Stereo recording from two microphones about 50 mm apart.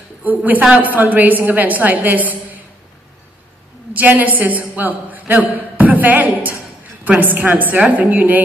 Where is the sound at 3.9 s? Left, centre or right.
Right.